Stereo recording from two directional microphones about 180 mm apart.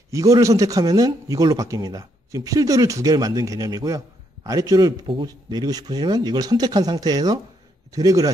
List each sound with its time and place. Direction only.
0.1 s a man's voice: 20° right (ahead or behind)